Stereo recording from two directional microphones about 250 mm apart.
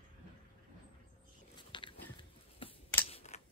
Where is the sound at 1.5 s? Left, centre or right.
Centre.